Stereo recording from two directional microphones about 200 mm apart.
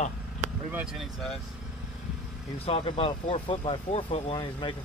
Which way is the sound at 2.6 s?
30° left (ahead or behind).